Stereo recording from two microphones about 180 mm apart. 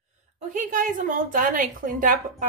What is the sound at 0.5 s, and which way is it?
A woman's voice, 45° right (ahead or behind).